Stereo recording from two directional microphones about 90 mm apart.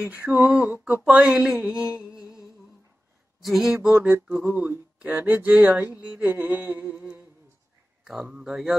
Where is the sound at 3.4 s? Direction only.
5° right (ahead or behind).